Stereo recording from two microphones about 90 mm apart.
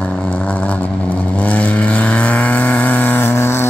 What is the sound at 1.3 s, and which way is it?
Vehicle, 15° left (ahead or behind).